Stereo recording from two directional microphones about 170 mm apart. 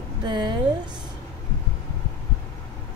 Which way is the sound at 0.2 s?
25° right (ahead or behind).